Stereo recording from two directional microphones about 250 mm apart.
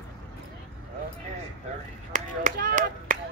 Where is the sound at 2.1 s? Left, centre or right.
Right.